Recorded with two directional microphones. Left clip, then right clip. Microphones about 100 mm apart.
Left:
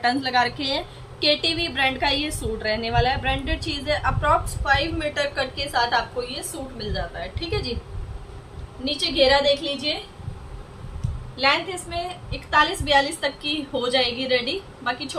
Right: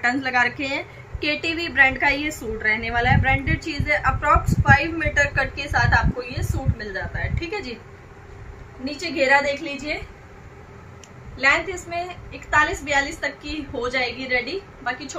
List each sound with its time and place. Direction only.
0.0 s a woman's voice: 10° left (ahead or behind)
8.8 s a woman's voice: 15° left (ahead or behind)
12.4 s a woman's voice: 20° left (ahead or behind)